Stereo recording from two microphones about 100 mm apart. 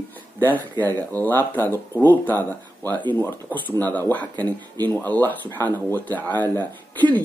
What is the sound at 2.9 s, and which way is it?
Speech, 50° right (ahead or behind).